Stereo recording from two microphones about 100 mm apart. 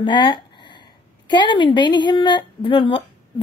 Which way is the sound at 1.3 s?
50° left (ahead or behind).